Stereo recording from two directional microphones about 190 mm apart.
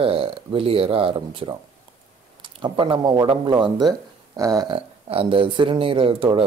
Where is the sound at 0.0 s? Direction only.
30° right (ahead or behind).